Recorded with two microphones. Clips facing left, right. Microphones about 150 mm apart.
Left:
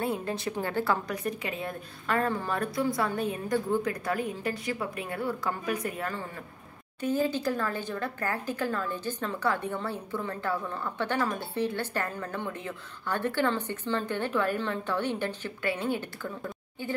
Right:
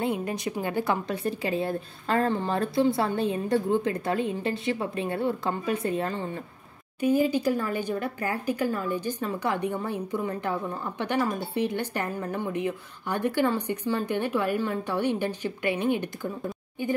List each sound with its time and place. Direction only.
0.0 s speech: 15° right (ahead or behind)
1.1 s speech: 30° right (ahead or behind)
7.0 s speech: 10° right (ahead or behind)